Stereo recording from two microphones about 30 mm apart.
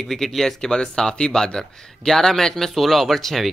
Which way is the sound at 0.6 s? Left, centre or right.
Left.